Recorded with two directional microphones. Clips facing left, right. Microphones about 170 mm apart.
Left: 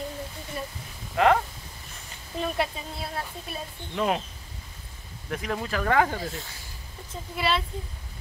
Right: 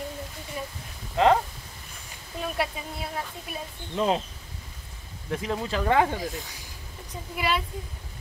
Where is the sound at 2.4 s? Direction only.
10° right (ahead or behind).